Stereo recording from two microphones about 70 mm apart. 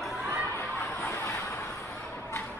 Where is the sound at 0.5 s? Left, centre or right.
Left.